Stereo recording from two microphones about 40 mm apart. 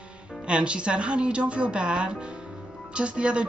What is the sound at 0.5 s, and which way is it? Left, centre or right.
Speech, right.